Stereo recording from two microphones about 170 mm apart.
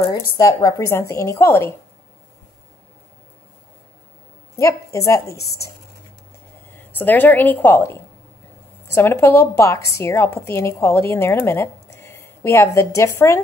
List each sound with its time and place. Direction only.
0.1 s a woman's voice: 20° left (ahead or behind)
4.6 s a woman's voice: 15° left (ahead or behind)
6.9 s a woman's voice: 10° left (ahead or behind)